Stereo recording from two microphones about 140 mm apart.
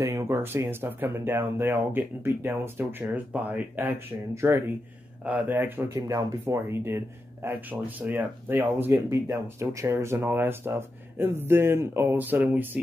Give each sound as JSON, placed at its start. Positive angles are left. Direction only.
{"t": 0.0, "sound": "speech", "side_deg": -20}